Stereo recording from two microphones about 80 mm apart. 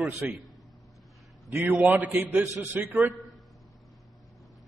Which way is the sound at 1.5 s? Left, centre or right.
Right.